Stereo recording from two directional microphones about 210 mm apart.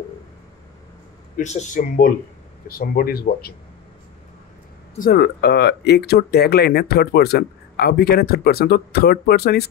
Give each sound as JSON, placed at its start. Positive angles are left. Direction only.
{"t": 1.3, "sound": "speech", "side_deg": 35}
{"t": 4.9, "sound": "speech", "side_deg": 45}